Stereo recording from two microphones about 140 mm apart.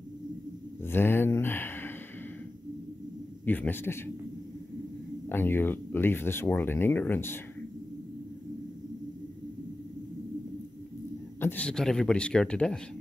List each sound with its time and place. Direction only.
0.8 s a sound: 15° left (ahead or behind)
3.4 s speech: 15° left (ahead or behind)
5.3 s speech: 15° left (ahead or behind)
11.3 s speech: 15° left (ahead or behind)